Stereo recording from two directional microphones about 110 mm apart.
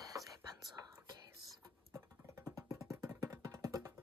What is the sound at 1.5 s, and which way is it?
Music, 30° right (ahead or behind).